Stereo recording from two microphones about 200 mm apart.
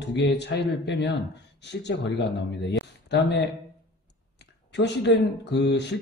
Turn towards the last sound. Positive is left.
turn(degrees=60)  # may be behind; listen again after turning